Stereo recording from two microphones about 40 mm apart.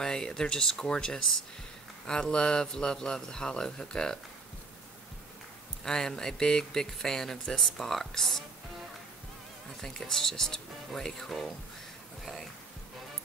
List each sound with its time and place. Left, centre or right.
0.0 s speech: centre
5.9 s speech: centre
9.8 s speech: centre